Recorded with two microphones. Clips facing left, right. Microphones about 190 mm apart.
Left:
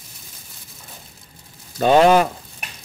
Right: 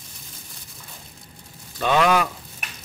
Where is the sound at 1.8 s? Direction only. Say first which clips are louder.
Left 6 dB; 40° left (ahead or behind).